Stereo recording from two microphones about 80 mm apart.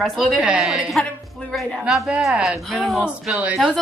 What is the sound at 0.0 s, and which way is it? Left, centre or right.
Speech, centre.